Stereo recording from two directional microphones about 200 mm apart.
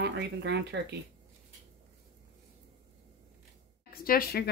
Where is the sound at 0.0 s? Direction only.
60° right (ahead or behind).